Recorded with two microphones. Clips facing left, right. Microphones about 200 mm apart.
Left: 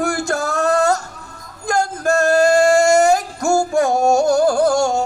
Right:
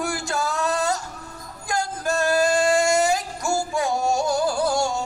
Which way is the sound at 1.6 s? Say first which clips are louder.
Left 7 dB; 45° left (ahead or behind).